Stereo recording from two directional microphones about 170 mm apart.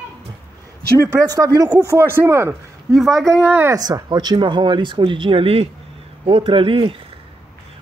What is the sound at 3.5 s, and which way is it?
A man's voice, 15° right (ahead or behind).